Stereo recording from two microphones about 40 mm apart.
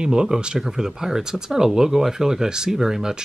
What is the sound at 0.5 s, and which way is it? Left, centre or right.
Speech, centre.